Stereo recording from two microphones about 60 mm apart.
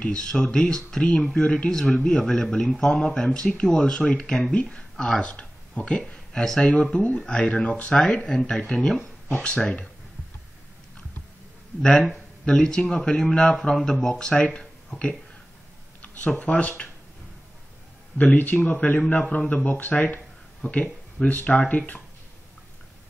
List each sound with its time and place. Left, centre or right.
0.0 s speech: centre
6.7 s speech: left
12.4 s speech: centre
16.3 s speech: left
18.1 s speech: left